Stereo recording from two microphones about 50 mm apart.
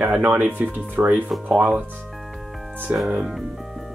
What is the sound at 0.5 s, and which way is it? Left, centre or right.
Speech, right.